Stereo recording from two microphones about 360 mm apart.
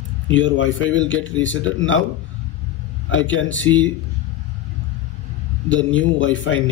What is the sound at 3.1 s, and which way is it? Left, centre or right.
Speech, left.